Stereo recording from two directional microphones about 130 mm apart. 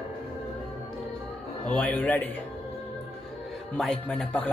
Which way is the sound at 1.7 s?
10° left (ahead or behind).